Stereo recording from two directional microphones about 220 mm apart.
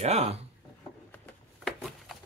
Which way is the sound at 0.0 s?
30° right (ahead or behind).